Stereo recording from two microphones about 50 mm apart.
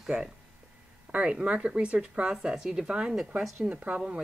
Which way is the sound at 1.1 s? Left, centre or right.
Right.